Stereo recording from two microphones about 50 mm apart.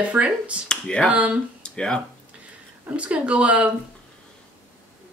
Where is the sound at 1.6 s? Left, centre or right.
Centre.